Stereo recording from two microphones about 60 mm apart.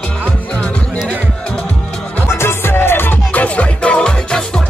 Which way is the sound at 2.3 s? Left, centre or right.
Left.